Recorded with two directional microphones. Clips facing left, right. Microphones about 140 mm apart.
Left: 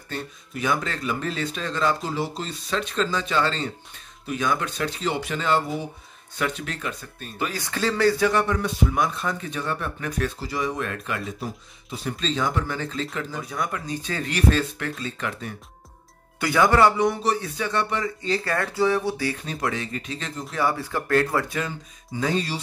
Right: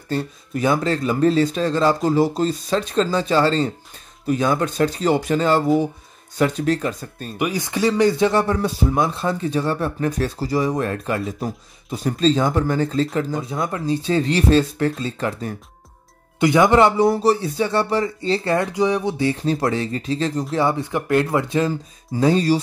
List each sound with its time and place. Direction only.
0.1 s speech: 35° right (ahead or behind)
7.3 s speech: 15° right (ahead or behind); by 15.5 s 35° right (ahead or behind)
16.3 s speech: 20° right (ahead or behind)
20.5 s speech: 25° right (ahead or behind); by 22.6 s 40° right (ahead or behind)